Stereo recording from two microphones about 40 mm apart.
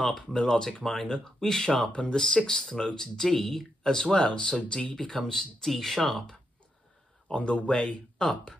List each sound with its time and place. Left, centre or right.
0.0 s speech: centre
3.9 s speech: centre
4.9 s speech: centre
7.2 s speech: left